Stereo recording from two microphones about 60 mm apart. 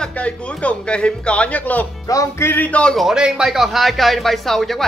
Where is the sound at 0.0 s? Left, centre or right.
Left.